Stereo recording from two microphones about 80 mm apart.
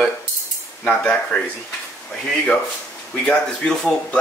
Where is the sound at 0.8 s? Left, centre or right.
Centre.